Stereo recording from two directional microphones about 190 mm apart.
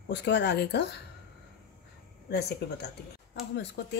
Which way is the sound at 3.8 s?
60° left (ahead or behind).